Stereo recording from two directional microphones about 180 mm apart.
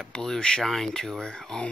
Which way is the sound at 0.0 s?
5° left (ahead or behind).